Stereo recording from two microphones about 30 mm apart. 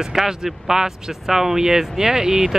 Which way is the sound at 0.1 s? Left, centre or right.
Centre.